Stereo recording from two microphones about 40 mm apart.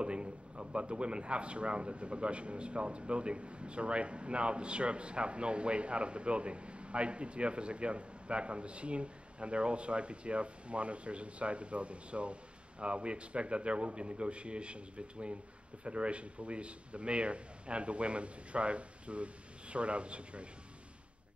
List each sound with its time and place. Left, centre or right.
0.0 s speech: right